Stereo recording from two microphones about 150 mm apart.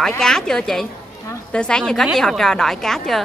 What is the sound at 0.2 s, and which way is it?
A woman's voice, 5° left (ahead or behind).